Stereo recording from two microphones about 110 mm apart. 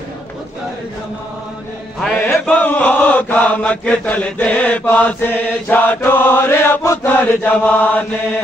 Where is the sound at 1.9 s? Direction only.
Centre (ahead or behind).